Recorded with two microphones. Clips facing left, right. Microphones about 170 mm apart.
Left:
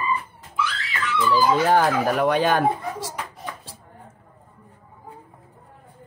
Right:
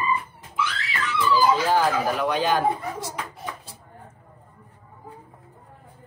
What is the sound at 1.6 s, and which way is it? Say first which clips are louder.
Speech: left 3 dB; 55° left (ahead or behind).